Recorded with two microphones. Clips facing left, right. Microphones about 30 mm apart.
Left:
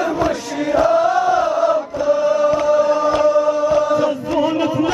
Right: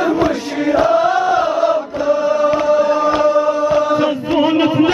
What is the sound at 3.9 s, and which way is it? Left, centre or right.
Chant, right.